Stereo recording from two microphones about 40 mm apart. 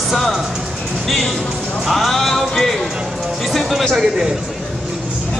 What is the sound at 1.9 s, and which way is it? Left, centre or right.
Speech, centre.